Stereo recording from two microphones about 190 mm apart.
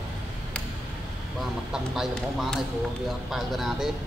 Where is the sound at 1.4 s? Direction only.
Centre (ahead or behind).